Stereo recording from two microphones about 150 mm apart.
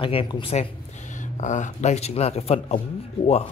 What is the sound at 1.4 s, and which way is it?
Speech, 55° left (ahead or behind).